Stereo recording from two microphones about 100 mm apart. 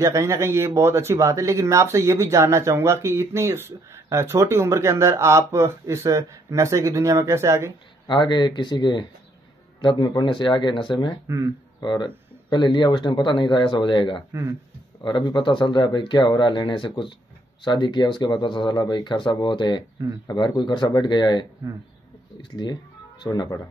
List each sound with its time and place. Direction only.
0.0 s speech: 30° right (ahead or behind)
8.1 s speech: 50° left (ahead or behind)
11.2 s speech: 30° right (ahead or behind)
11.8 s speech: 50° left (ahead or behind)